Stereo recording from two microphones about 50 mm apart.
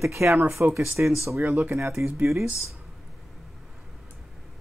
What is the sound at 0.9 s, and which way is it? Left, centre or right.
Speech, right.